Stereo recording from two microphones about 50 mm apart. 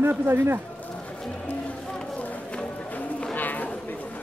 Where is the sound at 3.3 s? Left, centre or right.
Left.